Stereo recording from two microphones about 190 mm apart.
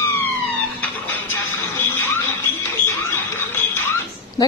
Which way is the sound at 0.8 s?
10° left (ahead or behind).